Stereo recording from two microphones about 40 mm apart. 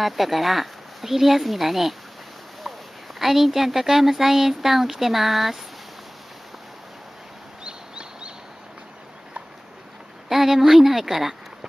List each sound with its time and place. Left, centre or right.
0.0 s speech: centre
3.2 s speech: centre
7.6 s turkey: right
10.3 s speech: centre